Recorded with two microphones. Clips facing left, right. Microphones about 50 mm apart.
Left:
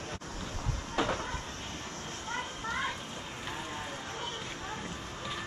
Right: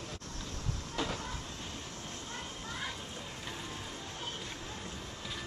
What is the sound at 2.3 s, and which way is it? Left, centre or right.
Children playing, left.